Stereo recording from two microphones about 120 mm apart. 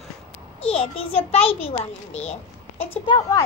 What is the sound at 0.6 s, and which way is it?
A child's voice, 55° left (ahead or behind).